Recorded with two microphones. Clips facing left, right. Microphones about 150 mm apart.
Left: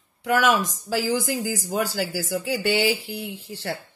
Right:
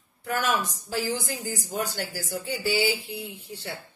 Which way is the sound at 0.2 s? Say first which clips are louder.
Left 6 dB; 90° left.